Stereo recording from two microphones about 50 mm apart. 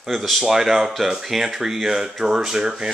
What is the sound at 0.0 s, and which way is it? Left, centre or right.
Speech, centre.